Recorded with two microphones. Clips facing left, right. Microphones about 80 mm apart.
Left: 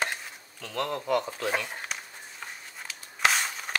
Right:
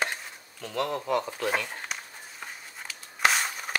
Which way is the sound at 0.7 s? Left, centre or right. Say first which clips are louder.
Even; centre.